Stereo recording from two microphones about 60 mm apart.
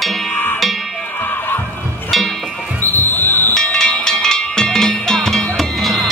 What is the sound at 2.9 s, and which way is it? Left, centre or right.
Music, left.